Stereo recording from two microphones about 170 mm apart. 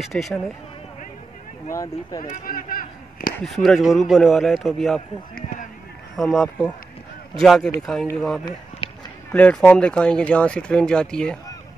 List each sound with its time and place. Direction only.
0.0 s speech: centre (ahead or behind)
1.7 s speech: 20° left (ahead or behind)
2.2 s speech: 55° left (ahead or behind)
3.4 s speech: centre (ahead or behind)
6.1 s speech: centre (ahead or behind)
8.8 s run: 30° left (ahead or behind)
9.3 s speech: 5° left (ahead or behind)